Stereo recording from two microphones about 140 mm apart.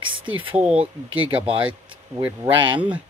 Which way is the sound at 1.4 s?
40° right (ahead or behind).